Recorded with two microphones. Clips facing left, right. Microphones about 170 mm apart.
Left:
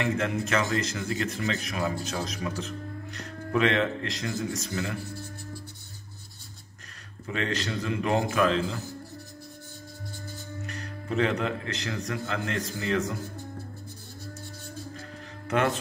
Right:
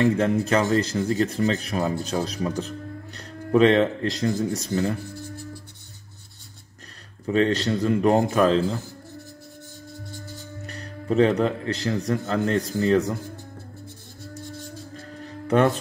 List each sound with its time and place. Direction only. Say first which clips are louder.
0.0 s speech: right 7 dB; 35° right (ahead or behind)
7.2 s speech: right 9 dB; 35° right (ahead or behind)
10.7 s speech: right 7 dB; 35° right (ahead or behind)
15.4 s speech: right 6 dB; 35° right (ahead or behind)